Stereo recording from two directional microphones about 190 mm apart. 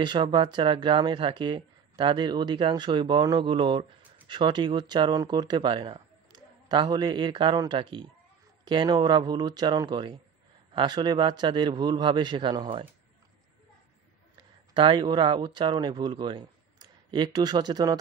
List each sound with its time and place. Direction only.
0.0 s speech: 25° right (ahead or behind)
14.3 s speech: 25° right (ahead or behind)